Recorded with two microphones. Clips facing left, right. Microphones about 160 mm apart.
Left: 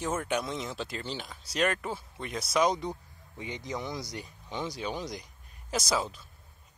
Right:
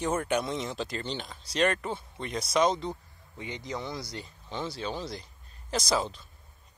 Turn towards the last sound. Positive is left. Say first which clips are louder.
# right 2 dB
turn(degrees=5)  # may be behind; listen again after turning